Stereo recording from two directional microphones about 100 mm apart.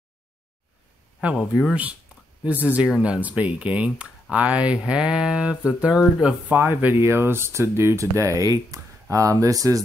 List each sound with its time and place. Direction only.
1.2 s speech: 5° right (ahead or behind); by 9.8 s 35° right (ahead or behind)